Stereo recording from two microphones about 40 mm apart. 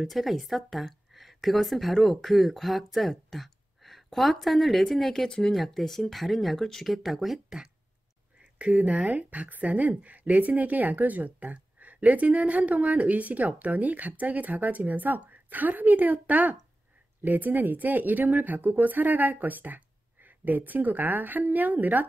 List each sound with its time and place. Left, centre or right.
0.0 s a woman's voice: centre
8.5 s speech: right